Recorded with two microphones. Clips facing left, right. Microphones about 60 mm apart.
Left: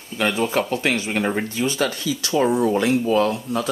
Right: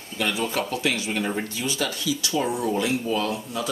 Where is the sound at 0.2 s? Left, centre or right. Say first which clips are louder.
Left 5 dB; left.